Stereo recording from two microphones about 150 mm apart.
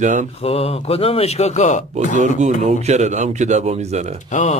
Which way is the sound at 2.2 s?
50° right (ahead or behind).